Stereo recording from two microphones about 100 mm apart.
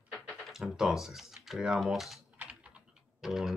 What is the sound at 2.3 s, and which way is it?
Typing, 10° right (ahead or behind).